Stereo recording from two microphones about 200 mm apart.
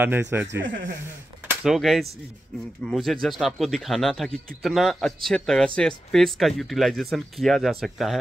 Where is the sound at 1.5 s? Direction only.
Centre (ahead or behind).